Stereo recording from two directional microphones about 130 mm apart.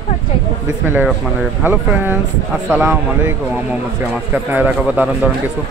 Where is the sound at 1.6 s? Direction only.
15° right (ahead or behind).